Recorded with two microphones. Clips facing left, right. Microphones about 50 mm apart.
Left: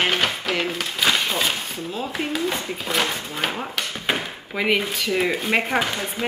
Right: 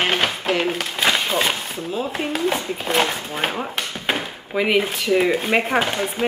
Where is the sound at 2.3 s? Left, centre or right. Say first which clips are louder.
Right 3 dB; right.